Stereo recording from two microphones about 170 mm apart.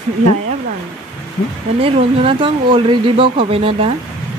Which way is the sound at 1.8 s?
30° right (ahead or behind).